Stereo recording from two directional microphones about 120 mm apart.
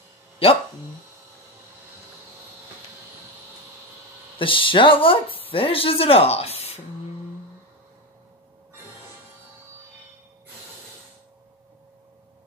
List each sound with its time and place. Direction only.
0.4 s speech: 55° left (ahead or behind)
4.4 s speech: 45° left (ahead or behind)